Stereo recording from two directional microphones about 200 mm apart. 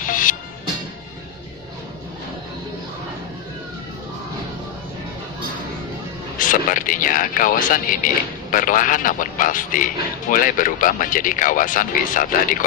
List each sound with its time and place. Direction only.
0.1 s music: 40° left (ahead or behind)
6.3 s a man's voice: 40° left (ahead or behind)